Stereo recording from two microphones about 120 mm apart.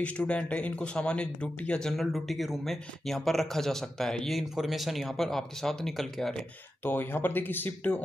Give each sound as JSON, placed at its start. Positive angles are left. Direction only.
{"t": 0.3, "sound": "speech", "side_deg": 10}
{"t": 6.8, "sound": "speech", "side_deg": 15}